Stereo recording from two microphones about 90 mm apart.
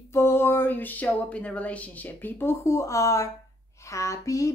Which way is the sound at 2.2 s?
30° left (ahead or behind).